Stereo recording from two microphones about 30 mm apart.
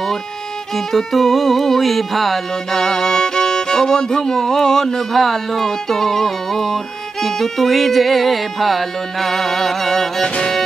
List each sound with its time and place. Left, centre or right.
0.7 s music: centre
2.7 s music: centre